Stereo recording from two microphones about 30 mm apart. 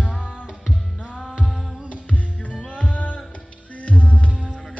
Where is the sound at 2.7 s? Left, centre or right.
Left.